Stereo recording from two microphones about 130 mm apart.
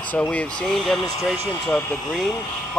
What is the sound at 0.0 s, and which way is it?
Speech, 10° left (ahead or behind).